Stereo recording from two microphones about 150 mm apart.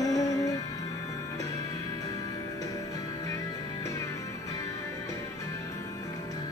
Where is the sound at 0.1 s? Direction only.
25° left (ahead or behind).